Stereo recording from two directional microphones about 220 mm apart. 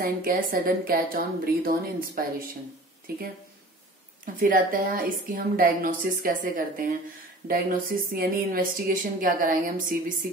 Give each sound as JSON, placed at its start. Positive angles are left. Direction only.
{"t": 0.0, "sound": "speech", "side_deg": -40}
{"t": 4.4, "sound": "speech", "side_deg": -40}